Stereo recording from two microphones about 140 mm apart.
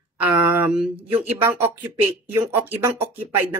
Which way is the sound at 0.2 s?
15° right (ahead or behind).